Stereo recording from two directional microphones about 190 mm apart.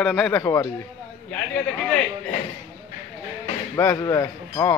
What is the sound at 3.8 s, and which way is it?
Speech, 15° left (ahead or behind).